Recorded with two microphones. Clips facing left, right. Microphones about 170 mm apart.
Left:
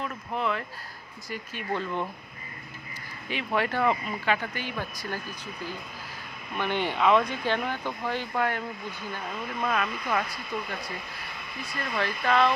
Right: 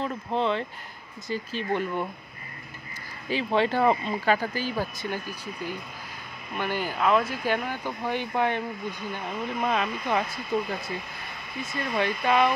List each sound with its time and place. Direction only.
0.0 s speech: 30° right (ahead or behind)
3.3 s speech: 30° right (ahead or behind)
6.5 s speech: 5° right (ahead or behind); by 10.6 s 25° right (ahead or behind)
11.6 s speech: 20° right (ahead or behind)